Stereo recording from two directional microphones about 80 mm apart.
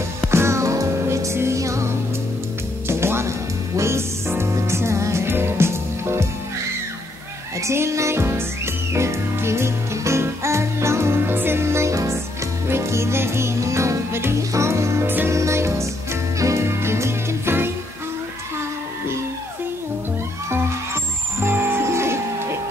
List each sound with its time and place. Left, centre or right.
0.3 s music: right
7.6 s music: right
20.4 s music: right